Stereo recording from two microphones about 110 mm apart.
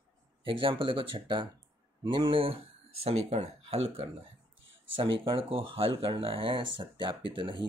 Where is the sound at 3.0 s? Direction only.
70° right (ahead or behind).